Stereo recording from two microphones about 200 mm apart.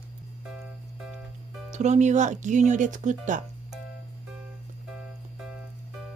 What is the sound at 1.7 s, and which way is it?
Speech, 35° right (ahead or behind).